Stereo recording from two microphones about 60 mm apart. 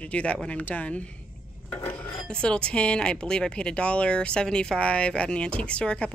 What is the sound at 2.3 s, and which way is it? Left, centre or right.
Speech, centre.